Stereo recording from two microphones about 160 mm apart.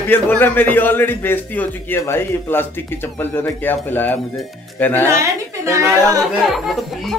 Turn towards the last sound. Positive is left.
turn(degrees=0)  # may be behind; listen again after turning